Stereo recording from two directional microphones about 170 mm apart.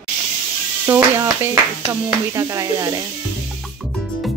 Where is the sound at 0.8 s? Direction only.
20° right (ahead or behind).